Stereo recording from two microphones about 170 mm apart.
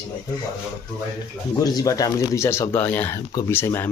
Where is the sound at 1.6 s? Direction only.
20° left (ahead or behind).